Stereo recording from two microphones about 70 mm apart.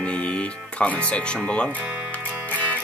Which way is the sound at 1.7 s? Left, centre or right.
Centre.